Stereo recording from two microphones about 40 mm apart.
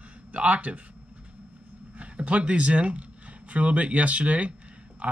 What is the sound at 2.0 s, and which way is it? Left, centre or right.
Speech, right.